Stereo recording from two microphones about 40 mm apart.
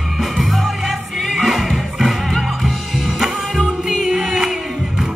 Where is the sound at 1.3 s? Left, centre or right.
Centre.